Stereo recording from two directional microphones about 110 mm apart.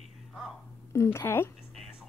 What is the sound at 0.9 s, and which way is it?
Speech, 25° left (ahead or behind).